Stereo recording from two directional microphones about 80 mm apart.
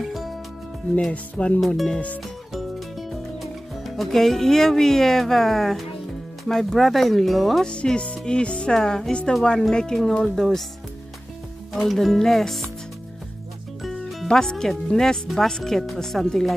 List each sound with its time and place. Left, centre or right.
0.0 s music: centre
1.1 s music: centre
1.6 s a woman's voice: centre
2.5 s music: centre
6.4 s speech: centre
7.6 s a woman's voice: centre
11.7 s speech: centre
13.8 s speech: centre